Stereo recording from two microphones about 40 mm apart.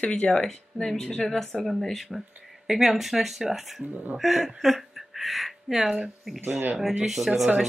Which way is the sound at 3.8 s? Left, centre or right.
Right.